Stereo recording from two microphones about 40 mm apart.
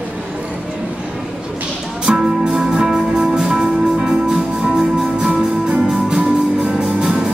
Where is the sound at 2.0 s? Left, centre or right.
Centre.